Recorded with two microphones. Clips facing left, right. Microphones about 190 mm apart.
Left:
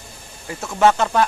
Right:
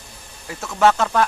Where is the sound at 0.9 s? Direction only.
5° left (ahead or behind).